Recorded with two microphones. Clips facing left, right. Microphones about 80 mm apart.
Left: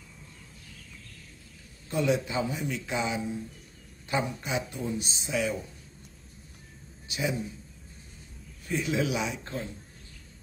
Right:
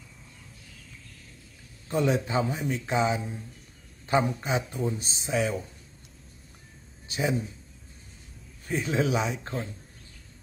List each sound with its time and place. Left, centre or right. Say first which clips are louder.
1.9 s speech: right 1 dB; right
7.1 s a man's voice: right 3 dB; right
8.6 s speech: right 2 dB; right